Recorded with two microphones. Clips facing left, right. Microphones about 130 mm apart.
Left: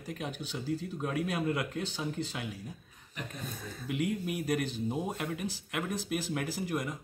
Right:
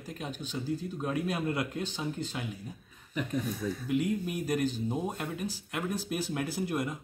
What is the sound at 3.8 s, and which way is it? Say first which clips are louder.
Speech: right 1 dB; 5° left (ahead or behind).